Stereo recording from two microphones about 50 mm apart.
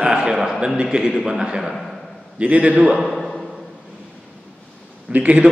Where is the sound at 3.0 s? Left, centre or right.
Centre.